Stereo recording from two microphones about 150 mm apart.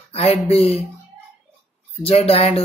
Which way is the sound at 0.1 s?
45° left (ahead or behind).